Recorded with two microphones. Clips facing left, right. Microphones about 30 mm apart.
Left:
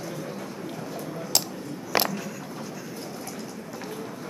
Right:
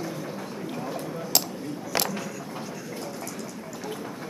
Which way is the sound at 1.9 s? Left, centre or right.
Centre.